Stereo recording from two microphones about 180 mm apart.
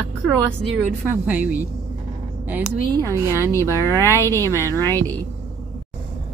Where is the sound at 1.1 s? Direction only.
10° right (ahead or behind).